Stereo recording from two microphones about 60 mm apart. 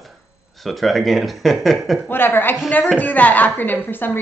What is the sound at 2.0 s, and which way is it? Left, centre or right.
A woman's voice, left.